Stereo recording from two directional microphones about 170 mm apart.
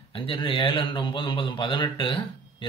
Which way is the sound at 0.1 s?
30° left (ahead or behind).